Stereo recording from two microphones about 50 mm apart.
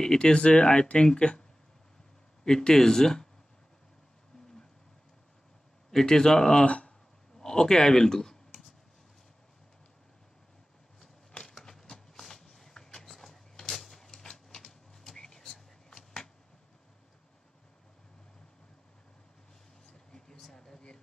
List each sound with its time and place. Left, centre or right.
0.0 s speech: centre
2.4 s speech: centre
5.9 s speech: centre
6.6 s speech: left
7.3 s clicking: centre
11.0 s a sound: centre
19.9 s a sound: centre